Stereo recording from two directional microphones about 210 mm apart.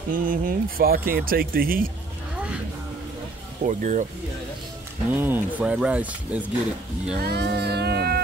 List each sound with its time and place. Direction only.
0.1 s speech: 40° right (ahead or behind)
3.6 s speech: 35° right (ahead or behind)
5.1 s speech: 10° right (ahead or behind)
7.2 s music: 50° right (ahead or behind)